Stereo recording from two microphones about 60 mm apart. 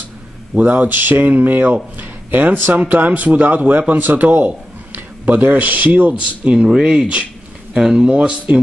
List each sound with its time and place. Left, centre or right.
0.6 s speech: right